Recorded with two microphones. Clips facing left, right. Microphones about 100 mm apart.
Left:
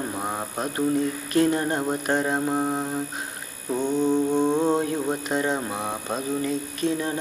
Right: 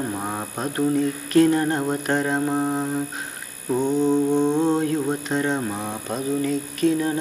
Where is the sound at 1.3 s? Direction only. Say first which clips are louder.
Right 5 dB; 20° left (ahead or behind).